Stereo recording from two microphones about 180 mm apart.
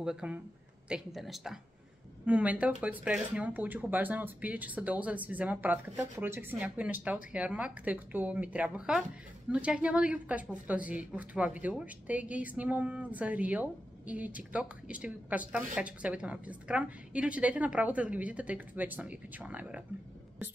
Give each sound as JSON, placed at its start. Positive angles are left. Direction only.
{"t": 0.0, "sound": "a woman's voice", "side_deg": -5}